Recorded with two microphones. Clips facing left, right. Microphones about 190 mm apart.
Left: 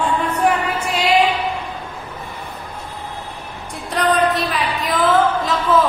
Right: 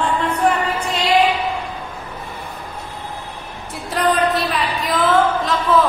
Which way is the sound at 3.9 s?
Centre (ahead or behind).